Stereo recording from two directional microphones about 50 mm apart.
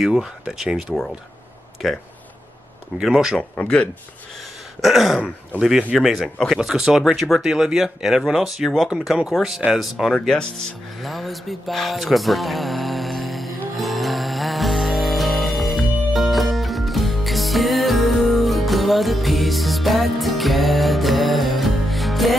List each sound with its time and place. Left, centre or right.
0.0 s speech: centre
3.0 s speech: centre
3.5 s speech: left
4.8 s throat clearing: centre
5.6 s speech: centre
5.9 s throat clearing: centre
6.5 s speech: centre
8.8 s throat clearing: centre
9.7 s speech: centre
11.0 s music: centre